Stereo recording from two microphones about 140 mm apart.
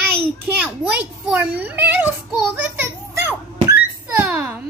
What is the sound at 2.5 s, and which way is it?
Children playing, 15° right (ahead or behind).